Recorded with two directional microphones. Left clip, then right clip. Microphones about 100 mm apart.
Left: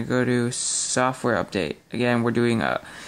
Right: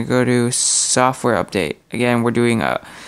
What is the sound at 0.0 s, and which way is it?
Speech, 30° right (ahead or behind).